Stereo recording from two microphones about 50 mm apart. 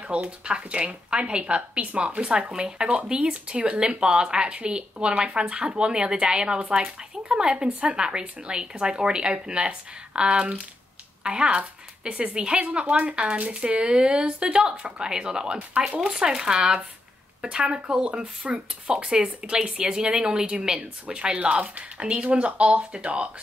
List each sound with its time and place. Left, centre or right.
0.1 s speech: right